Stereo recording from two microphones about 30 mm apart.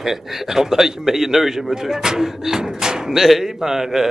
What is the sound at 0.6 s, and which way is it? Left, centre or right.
A man's voice, centre.